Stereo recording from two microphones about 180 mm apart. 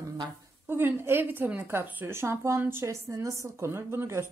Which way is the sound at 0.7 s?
10° right (ahead or behind).